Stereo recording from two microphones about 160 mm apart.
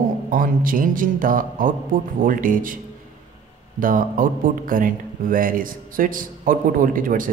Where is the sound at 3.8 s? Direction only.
60° right (ahead or behind).